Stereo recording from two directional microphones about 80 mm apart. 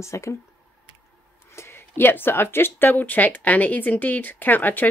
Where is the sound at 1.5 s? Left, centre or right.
Left.